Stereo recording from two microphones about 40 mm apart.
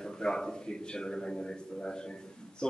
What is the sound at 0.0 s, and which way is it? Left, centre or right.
A man's voice, centre.